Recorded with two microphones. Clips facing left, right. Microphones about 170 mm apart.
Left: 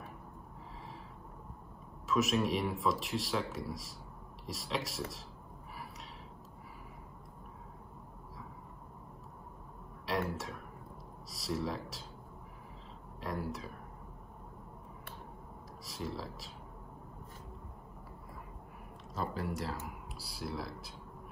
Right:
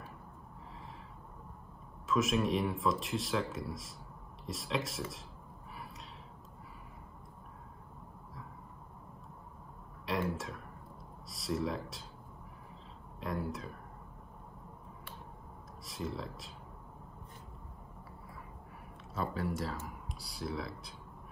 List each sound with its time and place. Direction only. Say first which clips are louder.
2.0 s speech: even; centre (ahead or behind)
10.0 s speech: even; centre (ahead or behind)
13.2 s speech: right 1 dB; centre (ahead or behind)
15.8 s speech: right 1 dB; centre (ahead or behind)
19.1 s speech: right 1 dB; centre (ahead or behind)